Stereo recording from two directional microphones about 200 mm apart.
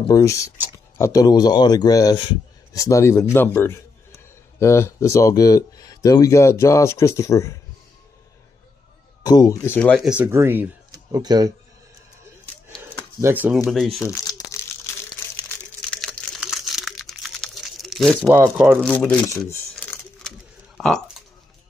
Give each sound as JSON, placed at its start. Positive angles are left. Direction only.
{"t": 0.1, "sound": "a man's voice", "side_deg": 15}
{"t": 9.2, "sound": "speech", "side_deg": 20}
{"t": 13.2, "sound": "speech", "side_deg": -10}
{"t": 14.5, "sound": "crumpling", "side_deg": 15}
{"t": 18.3, "sound": "speech", "side_deg": -10}
{"t": 18.8, "sound": "coin", "side_deg": 5}